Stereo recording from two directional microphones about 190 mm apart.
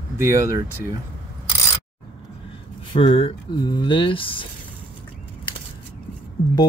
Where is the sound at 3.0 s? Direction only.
30° left (ahead or behind).